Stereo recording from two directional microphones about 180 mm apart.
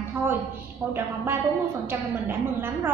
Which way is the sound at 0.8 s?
15° right (ahead or behind).